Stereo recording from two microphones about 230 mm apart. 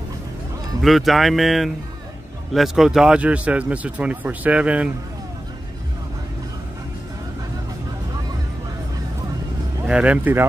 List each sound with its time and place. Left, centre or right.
0.8 s speech: centre
9.8 s speech: centre